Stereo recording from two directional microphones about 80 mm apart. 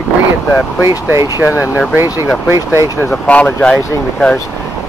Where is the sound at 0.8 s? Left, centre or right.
Right.